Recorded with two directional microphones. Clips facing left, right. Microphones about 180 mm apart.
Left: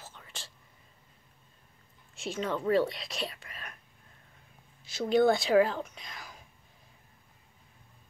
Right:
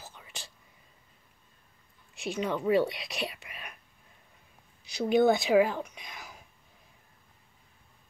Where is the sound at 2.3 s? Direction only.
15° right (ahead or behind).